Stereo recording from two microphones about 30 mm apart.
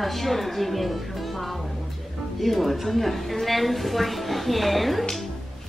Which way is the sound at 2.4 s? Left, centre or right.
Centre.